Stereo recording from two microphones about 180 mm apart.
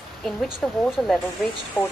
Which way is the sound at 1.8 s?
20° left (ahead or behind).